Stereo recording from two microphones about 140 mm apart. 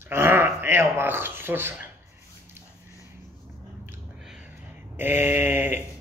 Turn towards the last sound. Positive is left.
turn(degrees=-15)  # may be behind; listen again after turning